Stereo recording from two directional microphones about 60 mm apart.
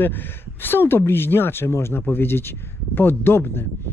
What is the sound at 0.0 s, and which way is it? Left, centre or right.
Speech, left.